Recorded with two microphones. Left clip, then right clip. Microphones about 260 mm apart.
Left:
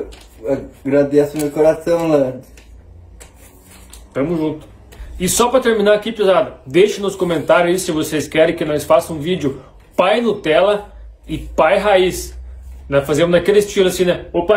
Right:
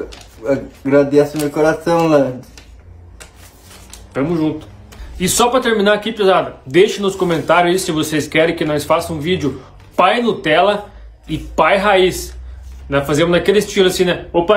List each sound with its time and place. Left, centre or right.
0.5 s speech: centre
4.1 s speech: centre